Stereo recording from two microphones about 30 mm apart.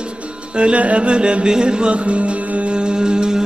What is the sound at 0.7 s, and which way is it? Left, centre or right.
Music, right.